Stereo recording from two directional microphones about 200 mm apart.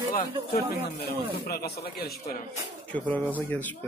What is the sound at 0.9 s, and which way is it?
Speech, 50° left (ahead or behind).